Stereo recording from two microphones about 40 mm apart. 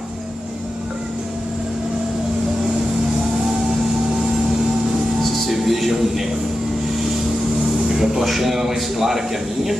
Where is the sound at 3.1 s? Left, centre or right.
Centre.